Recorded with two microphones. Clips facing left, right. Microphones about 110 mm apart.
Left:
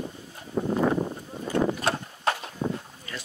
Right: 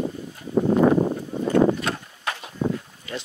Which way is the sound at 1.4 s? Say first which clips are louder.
Right 7 dB; 55° right (ahead or behind).